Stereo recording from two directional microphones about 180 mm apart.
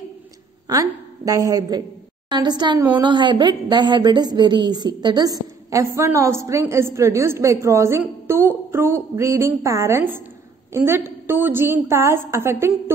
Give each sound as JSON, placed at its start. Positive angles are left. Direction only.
{"t": 0.7, "sound": "a woman's voice", "side_deg": -20}